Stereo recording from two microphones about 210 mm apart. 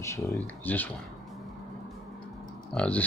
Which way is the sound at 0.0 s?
15° left (ahead or behind).